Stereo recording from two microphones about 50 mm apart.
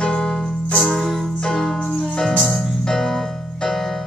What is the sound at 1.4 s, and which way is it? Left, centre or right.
Music, centre.